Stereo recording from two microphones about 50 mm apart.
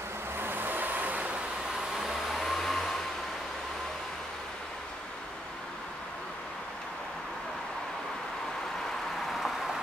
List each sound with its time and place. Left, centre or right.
0.4 s vehicle: right
2.0 s hair dryer: centre
9.3 s vehicle: centre